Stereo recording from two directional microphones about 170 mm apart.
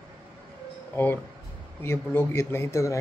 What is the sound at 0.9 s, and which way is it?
Speech, 10° left (ahead or behind).